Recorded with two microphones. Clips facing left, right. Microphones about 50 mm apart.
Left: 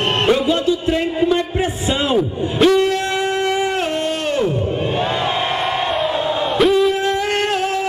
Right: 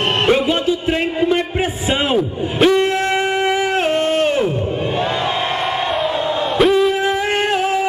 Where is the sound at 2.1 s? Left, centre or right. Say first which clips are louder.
Even; centre.